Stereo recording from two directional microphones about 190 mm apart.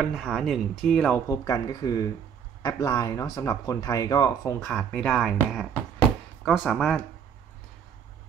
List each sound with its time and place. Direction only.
0.0 s speech: centre (ahead or behind)
1.3 s speech: 15° left (ahead or behind)
4.6 s speech: 5° left (ahead or behind)